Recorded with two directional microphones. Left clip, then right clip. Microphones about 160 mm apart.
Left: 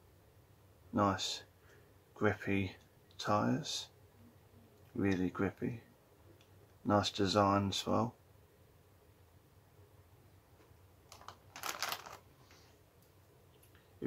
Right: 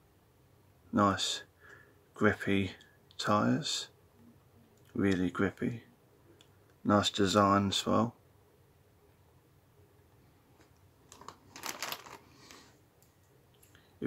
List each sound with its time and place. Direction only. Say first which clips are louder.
0.9 s speech: right 5 dB; 35° right (ahead or behind)
4.9 s speech: right 4 dB; 35° right (ahead or behind)
6.9 s speech: right 4 dB; 35° right (ahead or behind)
11.6 s a sound: even; 5° left (ahead or behind)